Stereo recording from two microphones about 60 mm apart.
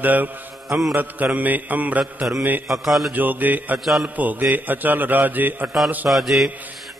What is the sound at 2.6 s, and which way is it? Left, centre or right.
Speech, centre.